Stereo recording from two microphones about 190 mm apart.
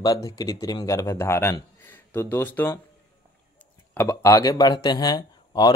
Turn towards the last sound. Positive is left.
turn(degrees=20)  # may be behind; listen again after turning